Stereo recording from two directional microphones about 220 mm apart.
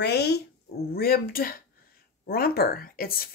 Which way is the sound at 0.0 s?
50° left (ahead or behind).